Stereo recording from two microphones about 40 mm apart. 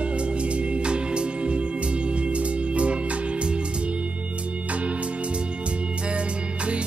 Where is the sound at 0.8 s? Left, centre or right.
Right.